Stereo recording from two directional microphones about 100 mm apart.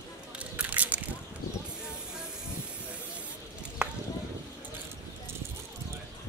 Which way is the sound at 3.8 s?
10° right (ahead or behind).